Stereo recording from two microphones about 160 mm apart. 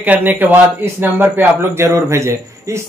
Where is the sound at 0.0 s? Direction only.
10° right (ahead or behind).